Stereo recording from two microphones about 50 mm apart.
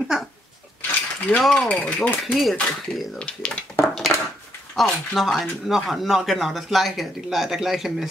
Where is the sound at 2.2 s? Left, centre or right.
Centre.